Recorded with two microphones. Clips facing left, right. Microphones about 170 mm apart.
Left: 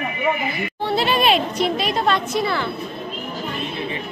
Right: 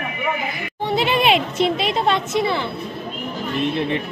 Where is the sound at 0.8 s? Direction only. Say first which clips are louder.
Right 1 dB; 20° right (ahead or behind).